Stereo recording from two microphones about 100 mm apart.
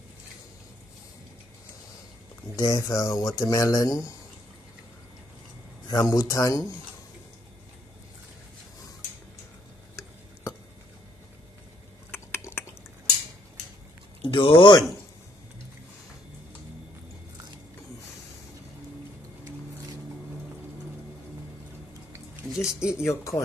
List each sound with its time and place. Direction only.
2.5 s speech: 35° left (ahead or behind)
5.9 s speech: 35° left (ahead or behind)
12.1 s typing: 25° left (ahead or behind)
14.2 s speech: 55° left (ahead or behind)
22.5 s speech: 5° right (ahead or behind)
22.8 s speech: 25° left (ahead or behind)